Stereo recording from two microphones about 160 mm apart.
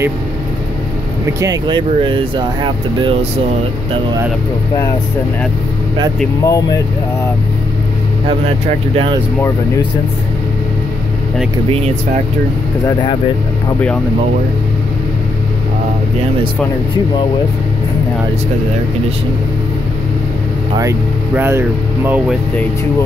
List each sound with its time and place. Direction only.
1.4 s speech: 25° right (ahead or behind)
6.4 s speech: 20° left (ahead or behind)
8.3 s speech: 35° right (ahead or behind)
21.4 s speech: 15° right (ahead or behind)